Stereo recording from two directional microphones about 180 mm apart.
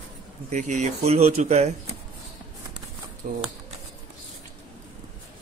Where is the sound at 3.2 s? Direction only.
50° right (ahead or behind).